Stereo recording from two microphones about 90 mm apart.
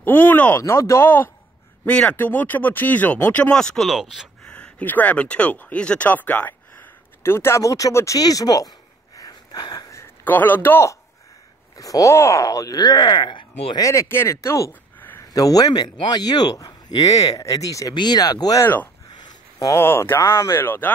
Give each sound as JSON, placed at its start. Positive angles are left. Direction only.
{"t": 0.0, "sound": "speech", "side_deg": 20}
{"t": 0.6, "sound": "speech", "side_deg": 35}
{"t": 3.5, "sound": "speech", "side_deg": 5}
{"t": 4.5, "sound": "speech", "side_deg": 10}
{"t": 9.8, "sound": "a sound", "side_deg": 30}
{"t": 10.2, "sound": "speech", "side_deg": 20}
{"t": 11.7, "sound": "speech", "side_deg": 40}
{"t": 13.7, "sound": "speech", "side_deg": 35}
{"t": 17.9, "sound": "speech", "side_deg": 50}
{"t": 19.1, "sound": "a sound", "side_deg": 50}
{"t": 19.7, "sound": "speech", "side_deg": 25}